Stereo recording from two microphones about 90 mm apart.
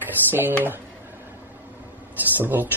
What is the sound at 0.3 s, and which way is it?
Speech, 20° right (ahead or behind).